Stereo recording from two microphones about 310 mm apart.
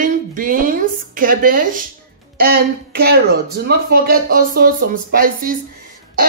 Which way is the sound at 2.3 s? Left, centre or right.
Right.